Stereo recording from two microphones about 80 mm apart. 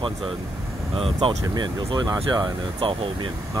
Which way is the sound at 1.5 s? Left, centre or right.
Right.